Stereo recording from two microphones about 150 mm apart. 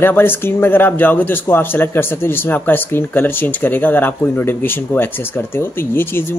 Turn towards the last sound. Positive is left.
turn(degrees=15)  # may be behind; listen again after turning